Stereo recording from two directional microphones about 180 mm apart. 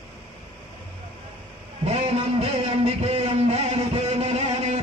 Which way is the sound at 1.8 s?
35° right (ahead or behind).